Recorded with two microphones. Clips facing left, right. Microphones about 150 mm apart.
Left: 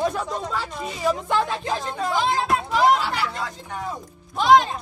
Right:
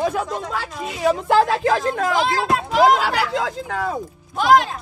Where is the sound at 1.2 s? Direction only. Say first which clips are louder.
Right 7 dB; 90° right.